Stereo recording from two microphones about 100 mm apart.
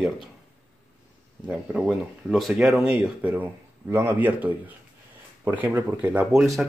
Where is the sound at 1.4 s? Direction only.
10° right (ahead or behind).